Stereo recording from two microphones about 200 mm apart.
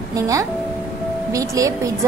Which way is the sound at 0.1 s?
15° right (ahead or behind).